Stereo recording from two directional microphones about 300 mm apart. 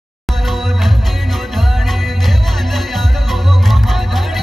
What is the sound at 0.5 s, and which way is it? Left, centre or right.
Music, centre.